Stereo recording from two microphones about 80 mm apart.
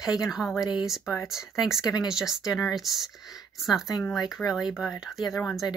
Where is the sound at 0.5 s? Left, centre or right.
Left.